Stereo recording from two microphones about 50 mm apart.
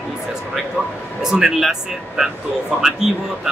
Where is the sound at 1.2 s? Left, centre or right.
Centre.